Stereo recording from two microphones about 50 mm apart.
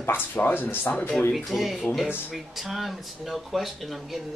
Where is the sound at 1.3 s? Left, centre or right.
Centre.